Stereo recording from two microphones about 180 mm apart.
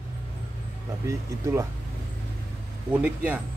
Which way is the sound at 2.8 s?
10° right (ahead or behind).